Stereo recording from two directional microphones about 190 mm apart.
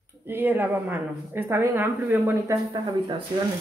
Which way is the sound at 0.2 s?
10° right (ahead or behind).